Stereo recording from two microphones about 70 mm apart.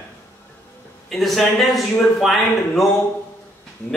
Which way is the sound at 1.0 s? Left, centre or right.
Centre.